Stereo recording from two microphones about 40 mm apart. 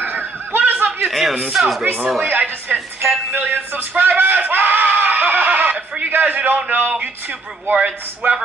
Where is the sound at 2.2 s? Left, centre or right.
Right.